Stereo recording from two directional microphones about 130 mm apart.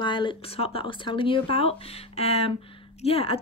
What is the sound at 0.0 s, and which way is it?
Speech, 40° left (ahead or behind).